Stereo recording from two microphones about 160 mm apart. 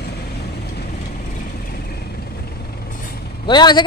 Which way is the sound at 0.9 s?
60° left (ahead or behind).